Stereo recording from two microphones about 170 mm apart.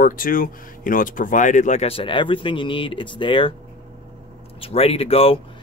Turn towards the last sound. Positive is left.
turn(degrees=35)  # may be behind; listen again after turning